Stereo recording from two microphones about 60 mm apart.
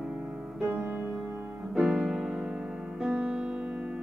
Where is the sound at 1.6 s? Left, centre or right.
Centre.